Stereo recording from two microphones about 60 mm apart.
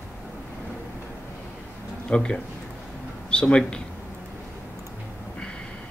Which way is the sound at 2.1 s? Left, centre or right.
Centre.